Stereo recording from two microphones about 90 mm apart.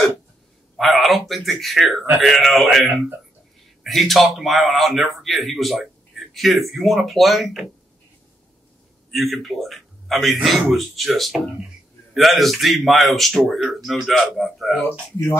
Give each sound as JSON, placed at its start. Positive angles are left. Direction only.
{"t": 0.7, "sound": "a man's voice", "side_deg": 0}
{"t": 9.1, "sound": "a man's voice", "side_deg": 0}